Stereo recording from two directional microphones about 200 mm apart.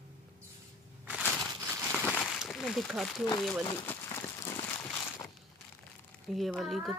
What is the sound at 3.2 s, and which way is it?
Speech, 20° left (ahead or behind).